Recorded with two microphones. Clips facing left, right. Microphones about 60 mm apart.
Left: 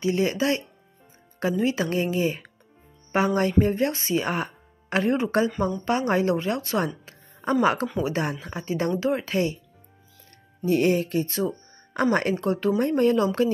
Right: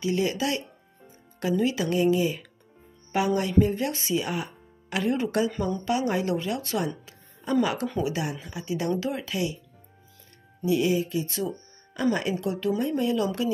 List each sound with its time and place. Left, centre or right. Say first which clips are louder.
0.0 s speech: left 3 dB; left
10.6 s speech: left 2 dB; left
11.2 s speech: left 4 dB; left
11.9 s speech: left 3 dB; left